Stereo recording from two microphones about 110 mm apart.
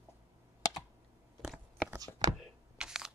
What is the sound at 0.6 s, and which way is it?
Computer keyboard, 35° left (ahead or behind).